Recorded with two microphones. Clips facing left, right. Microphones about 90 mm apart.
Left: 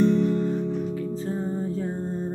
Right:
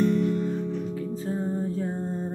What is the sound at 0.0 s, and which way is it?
Music, 30° left (ahead or behind).